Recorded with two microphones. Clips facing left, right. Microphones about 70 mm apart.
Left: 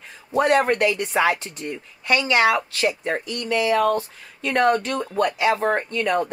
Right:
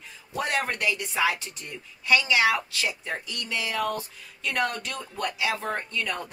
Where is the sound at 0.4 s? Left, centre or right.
Left.